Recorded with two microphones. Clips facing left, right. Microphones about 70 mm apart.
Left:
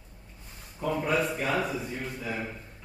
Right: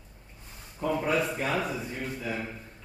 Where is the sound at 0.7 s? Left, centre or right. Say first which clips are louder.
Even; centre.